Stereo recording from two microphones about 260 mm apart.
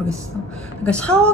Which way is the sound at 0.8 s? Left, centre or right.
Centre.